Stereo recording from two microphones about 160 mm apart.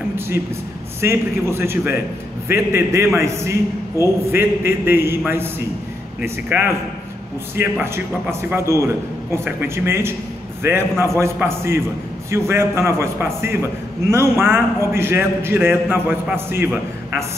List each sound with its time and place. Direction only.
1.0 s a man's voice: 15° right (ahead or behind)